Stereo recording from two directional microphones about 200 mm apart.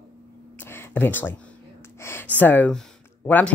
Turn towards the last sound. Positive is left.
turn(degrees=5)  # may be behind; listen again after turning